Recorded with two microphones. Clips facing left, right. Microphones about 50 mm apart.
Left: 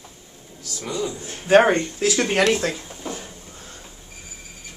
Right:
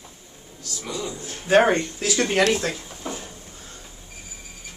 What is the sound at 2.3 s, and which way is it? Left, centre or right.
Speech, centre.